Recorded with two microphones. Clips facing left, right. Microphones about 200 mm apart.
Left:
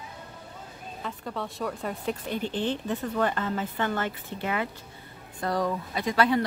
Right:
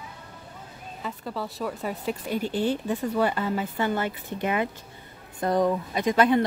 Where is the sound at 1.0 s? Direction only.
5° right (ahead or behind); by 6.5 s 20° right (ahead or behind).